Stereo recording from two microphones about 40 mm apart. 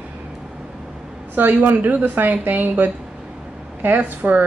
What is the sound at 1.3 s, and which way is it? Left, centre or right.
Speech, right.